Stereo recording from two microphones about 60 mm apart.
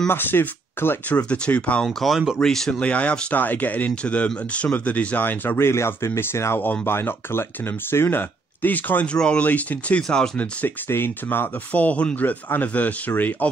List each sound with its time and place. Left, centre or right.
0.1 s speech: left
1.1 s speech: left
1.9 s speech: centre
2.8 s speech: left
5.6 s speech: left
6.6 s speech: left
9.1 s speech: centre
10.0 s speech: centre
10.3 s speech: left
10.9 s speech: left